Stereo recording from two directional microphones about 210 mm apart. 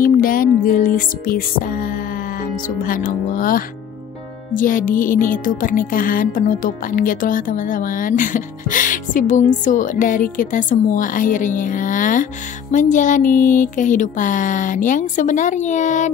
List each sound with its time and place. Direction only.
0.0 s music: 45° left (ahead or behind)
2.8 s speech: 40° left (ahead or behind)